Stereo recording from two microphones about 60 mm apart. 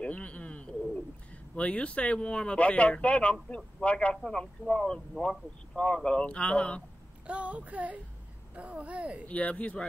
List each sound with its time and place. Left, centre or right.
0.0 s bird: left
1.5 s speech: centre
7.2 s speech: right
9.3 s speech: left